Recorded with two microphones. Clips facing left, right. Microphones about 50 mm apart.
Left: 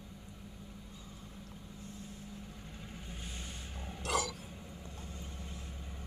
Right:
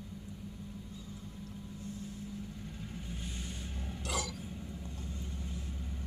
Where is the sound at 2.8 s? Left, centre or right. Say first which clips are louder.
Right 3 dB; centre.